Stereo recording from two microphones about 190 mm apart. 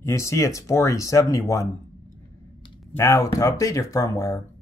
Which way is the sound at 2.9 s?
15° left (ahead or behind).